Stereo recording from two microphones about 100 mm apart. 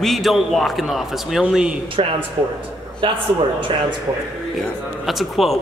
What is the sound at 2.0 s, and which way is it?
Speech, 60° right (ahead or behind).